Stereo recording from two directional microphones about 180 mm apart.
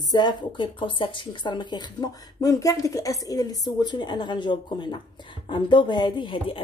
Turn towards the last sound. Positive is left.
turn(degrees=30)  # may be behind; listen again after turning